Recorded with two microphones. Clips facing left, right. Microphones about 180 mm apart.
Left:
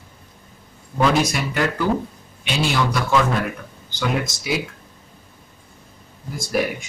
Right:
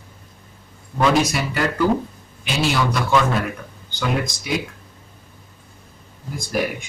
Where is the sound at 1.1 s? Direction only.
Centre (ahead or behind).